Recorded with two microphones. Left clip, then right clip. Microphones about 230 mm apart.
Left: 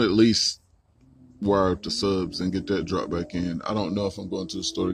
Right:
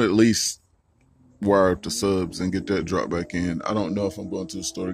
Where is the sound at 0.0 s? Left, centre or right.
Centre.